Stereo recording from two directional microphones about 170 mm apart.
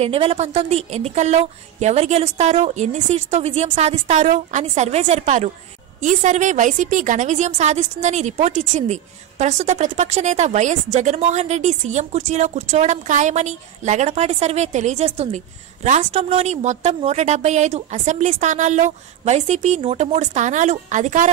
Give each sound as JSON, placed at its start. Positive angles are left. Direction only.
{"t": 0.0, "sound": "a woman's voice", "side_deg": -35}